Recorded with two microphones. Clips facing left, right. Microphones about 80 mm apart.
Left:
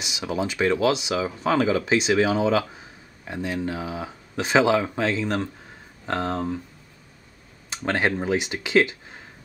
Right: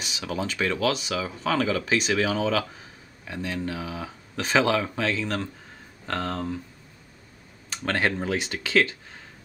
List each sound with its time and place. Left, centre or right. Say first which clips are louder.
0.0 s speech: left 3 dB; centre
4.4 s speech: left 3 dB; centre
7.7 s speech: left 2 dB; centre